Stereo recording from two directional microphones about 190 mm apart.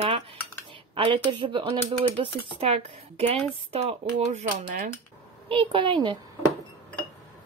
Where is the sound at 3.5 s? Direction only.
35° right (ahead or behind).